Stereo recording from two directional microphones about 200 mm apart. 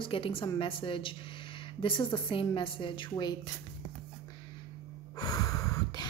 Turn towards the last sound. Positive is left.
turn(degrees=20)  # may be behind; listen again after turning